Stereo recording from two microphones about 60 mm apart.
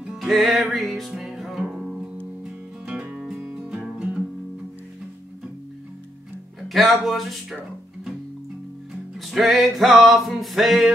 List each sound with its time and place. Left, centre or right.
0.0 s music: centre
2.4 s music: right
6.7 s music: centre
9.3 s music: centre